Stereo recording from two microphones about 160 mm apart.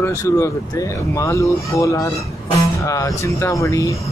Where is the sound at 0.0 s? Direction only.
20° left (ahead or behind).